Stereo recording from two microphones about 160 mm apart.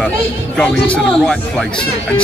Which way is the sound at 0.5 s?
5° left (ahead or behind).